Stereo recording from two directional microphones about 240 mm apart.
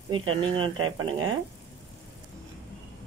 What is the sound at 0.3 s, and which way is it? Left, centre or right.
Speech, right.